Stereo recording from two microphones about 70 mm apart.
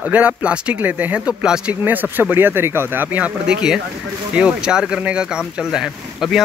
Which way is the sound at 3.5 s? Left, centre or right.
Centre.